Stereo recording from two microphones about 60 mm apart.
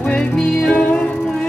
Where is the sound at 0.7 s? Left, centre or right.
Centre.